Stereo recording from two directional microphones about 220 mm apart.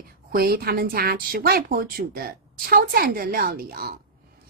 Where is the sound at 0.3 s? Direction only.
45° right (ahead or behind).